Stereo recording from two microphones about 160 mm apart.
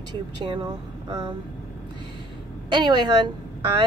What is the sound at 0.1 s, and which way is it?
Speech, 30° right (ahead or behind).